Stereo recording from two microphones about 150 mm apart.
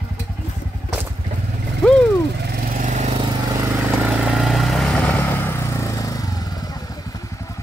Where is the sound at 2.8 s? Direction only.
55° right (ahead or behind).